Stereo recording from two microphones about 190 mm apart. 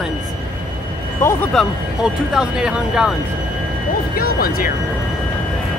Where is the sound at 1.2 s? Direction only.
15° left (ahead or behind).